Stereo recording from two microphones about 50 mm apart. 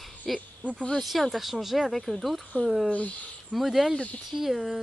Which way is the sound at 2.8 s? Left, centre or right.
Left.